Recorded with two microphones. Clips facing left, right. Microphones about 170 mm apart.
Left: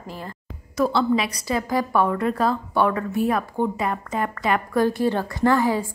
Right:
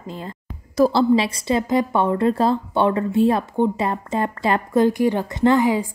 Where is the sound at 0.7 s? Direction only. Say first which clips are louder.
Right 5 dB; 35° right (ahead or behind).